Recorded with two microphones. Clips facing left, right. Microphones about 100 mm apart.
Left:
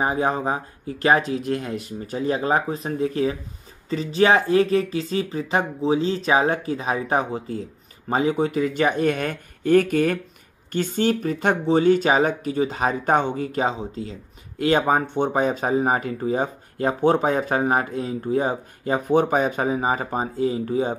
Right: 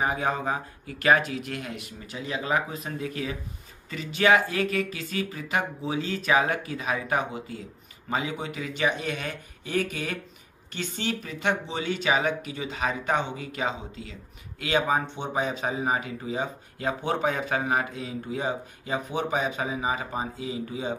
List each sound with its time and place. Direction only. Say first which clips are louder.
0.0 s speech: left 5 dB; 35° left (ahead or behind)